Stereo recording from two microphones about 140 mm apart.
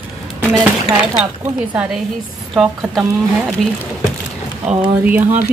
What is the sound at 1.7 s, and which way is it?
Speech, 5° right (ahead or behind).